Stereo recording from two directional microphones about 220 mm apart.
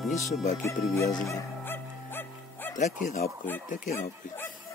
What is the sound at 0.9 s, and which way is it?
Music, 15° left (ahead or behind).